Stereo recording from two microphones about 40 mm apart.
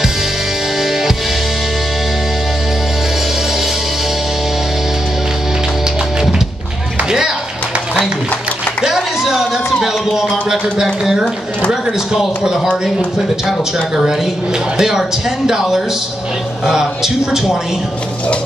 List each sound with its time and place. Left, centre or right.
0.7 s music: centre
7.1 s music: centre
8.8 s music: centre
14.8 s a man's voice: centre